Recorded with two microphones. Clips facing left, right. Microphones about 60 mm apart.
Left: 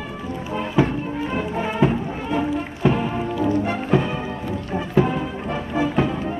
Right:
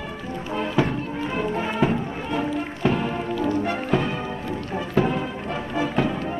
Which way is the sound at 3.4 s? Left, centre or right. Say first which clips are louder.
Left 3 dB; centre.